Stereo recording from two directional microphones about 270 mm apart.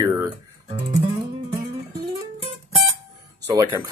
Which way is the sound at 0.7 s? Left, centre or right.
Right.